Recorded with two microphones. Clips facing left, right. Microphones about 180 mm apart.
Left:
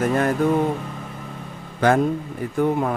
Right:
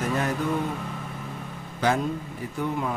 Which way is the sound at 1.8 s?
55° left (ahead or behind).